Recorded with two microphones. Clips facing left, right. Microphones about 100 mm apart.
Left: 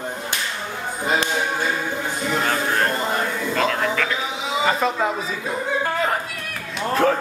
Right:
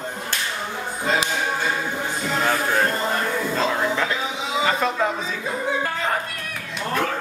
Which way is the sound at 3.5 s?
20° right (ahead or behind).